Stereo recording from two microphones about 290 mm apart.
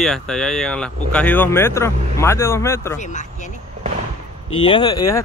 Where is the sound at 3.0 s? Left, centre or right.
Left.